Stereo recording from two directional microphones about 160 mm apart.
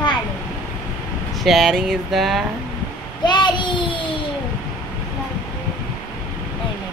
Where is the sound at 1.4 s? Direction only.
Centre (ahead or behind).